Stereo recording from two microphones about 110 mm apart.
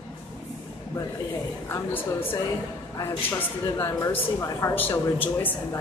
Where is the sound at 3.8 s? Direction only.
20° left (ahead or behind).